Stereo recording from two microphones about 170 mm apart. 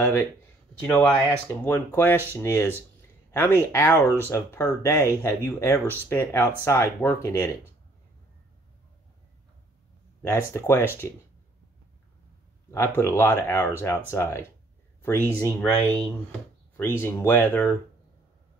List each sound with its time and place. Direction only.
0.0 s speech: 15° left (ahead or behind)
1.5 s speech: 10° left (ahead or behind)
10.2 s speech: 15° left (ahead or behind)
12.7 s speech: 15° left (ahead or behind)